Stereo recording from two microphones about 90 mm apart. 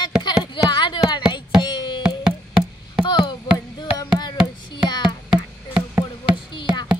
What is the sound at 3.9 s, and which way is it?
Music, 55° left (ahead or behind).